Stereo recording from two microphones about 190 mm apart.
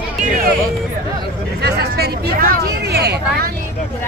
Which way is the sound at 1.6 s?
55° right (ahead or behind).